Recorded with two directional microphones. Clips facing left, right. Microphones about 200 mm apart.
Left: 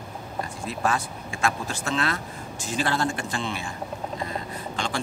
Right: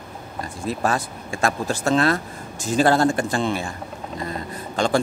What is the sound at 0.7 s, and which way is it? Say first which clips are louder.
A man's voice: right 4 dB; 40° right (ahead or behind).